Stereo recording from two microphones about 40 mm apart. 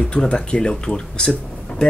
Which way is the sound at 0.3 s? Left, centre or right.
Left.